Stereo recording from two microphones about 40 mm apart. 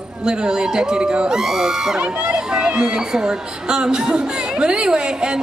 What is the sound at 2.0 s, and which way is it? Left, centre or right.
Speech, right.